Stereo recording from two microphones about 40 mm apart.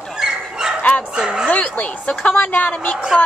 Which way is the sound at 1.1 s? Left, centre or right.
Centre.